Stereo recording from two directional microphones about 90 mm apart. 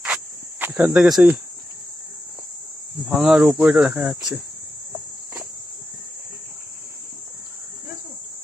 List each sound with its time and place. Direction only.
0.0 s cricket: 20° right (ahead or behind)
0.9 s cricket: 5° right (ahead or behind)
3.1 s speech: 10° right (ahead or behind)
3.5 s speech: 20° right (ahead or behind)